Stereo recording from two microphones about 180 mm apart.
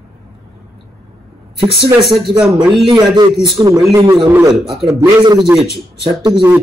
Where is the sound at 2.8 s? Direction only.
25° right (ahead or behind).